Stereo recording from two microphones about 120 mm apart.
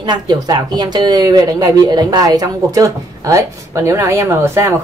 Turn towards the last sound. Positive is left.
turn(degrees=-20)  # may be behind; listen again after turning